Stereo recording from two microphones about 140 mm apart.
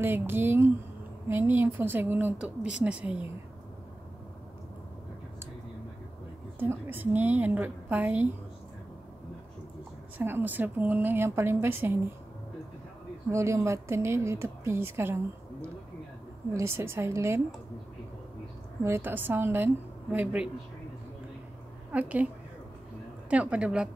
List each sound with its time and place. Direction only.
0.0 s a woman's voice: 15° right (ahead or behind)
6.6 s a woman's voice: 15° right (ahead or behind)
10.1 s a woman's voice: 15° right (ahead or behind)
13.3 s a woman's voice: 20° right (ahead or behind)
16.5 s a woman's voice: 20° right (ahead or behind)
18.9 s a woman's voice: 15° right (ahead or behind)
21.9 s a woman's voice: 10° right (ahead or behind)
23.3 s a woman's voice: 10° right (ahead or behind)